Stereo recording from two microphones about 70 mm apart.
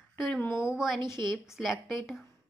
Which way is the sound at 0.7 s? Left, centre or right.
Centre.